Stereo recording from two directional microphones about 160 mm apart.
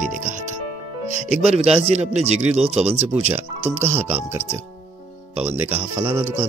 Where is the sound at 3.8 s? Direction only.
15° right (ahead or behind).